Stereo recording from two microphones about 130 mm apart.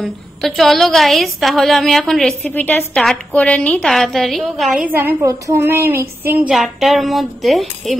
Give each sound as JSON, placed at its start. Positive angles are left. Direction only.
{"t": 0.0, "sound": "a woman's voice", "side_deg": 0}
{"t": 2.5, "sound": "a woman's voice", "side_deg": 15}
{"t": 4.8, "sound": "a woman's voice", "side_deg": -15}
{"t": 6.5, "sound": "a woman's voice", "side_deg": 0}